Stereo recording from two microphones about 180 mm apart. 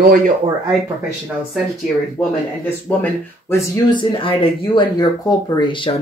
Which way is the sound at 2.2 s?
Centre (ahead or behind).